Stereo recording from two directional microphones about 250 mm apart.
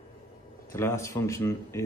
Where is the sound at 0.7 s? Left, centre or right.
Centre.